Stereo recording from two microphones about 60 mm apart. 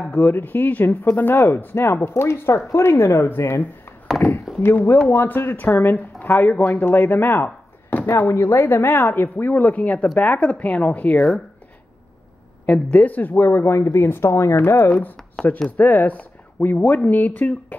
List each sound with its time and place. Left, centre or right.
0.0 s speech: left
7.4 s a sound: left
8.1 s speech: left
12.9 s speech: left